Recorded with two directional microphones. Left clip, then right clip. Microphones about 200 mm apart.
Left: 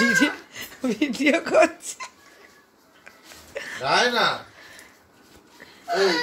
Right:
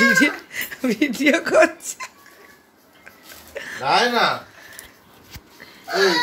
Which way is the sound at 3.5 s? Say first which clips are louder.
Right 2 dB; centre (ahead or behind).